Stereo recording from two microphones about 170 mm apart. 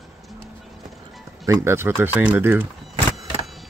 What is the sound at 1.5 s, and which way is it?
Speech, 15° right (ahead or behind).